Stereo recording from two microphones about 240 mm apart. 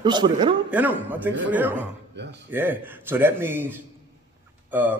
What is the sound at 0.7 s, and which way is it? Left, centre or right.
Speech, centre.